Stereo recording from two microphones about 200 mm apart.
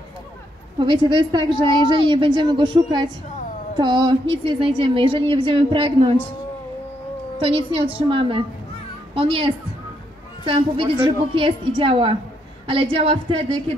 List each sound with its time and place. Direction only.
0.7 s a woman's voice: 25° right (ahead or behind)
7.3 s a woman's voice: 25° right (ahead or behind)